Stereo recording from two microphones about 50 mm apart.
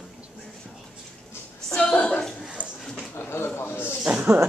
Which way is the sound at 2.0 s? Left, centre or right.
Centre.